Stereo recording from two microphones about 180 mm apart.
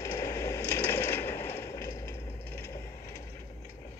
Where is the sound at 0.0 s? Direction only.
20° left (ahead or behind).